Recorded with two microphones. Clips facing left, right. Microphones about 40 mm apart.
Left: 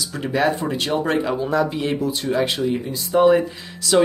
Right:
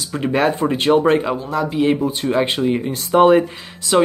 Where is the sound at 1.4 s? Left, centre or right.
Centre.